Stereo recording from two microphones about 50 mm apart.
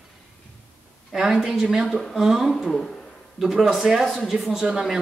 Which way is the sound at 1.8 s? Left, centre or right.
Centre.